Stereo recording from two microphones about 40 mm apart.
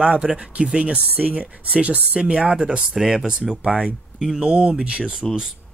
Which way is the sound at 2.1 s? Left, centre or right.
Right.